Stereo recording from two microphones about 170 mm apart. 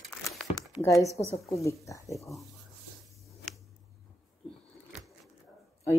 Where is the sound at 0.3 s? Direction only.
Centre (ahead or behind).